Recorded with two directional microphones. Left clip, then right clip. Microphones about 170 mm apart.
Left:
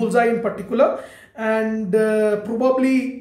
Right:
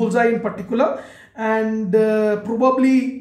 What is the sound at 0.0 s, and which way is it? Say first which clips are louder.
Speech: even; 5° left (ahead or behind).